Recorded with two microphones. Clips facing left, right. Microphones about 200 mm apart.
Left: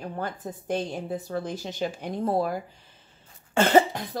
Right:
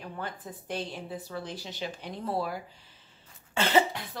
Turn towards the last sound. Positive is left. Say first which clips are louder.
# left 6 dB
turn(degrees=50)  # may be behind; listen again after turning